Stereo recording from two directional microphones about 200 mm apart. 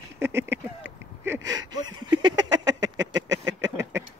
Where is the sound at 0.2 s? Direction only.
10° right (ahead or behind).